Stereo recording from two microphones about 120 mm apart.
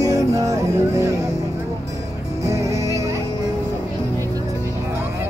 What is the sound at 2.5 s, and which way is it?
Music, 25° right (ahead or behind).